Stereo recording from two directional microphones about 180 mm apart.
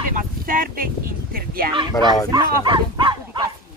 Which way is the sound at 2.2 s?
25° right (ahead or behind).